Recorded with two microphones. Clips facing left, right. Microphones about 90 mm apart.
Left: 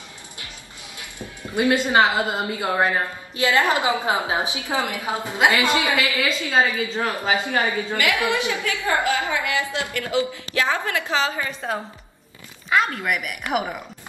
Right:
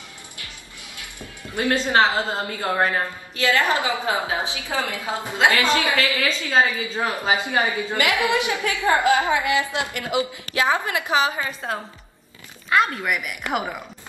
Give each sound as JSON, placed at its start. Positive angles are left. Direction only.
{"t": 0.9, "sound": "music", "side_deg": 20}
{"t": 1.9, "sound": "a woman's voice", "side_deg": 15}
{"t": 7.0, "sound": "a woman's voice", "side_deg": -20}
{"t": 12.6, "sound": "speech", "side_deg": 0}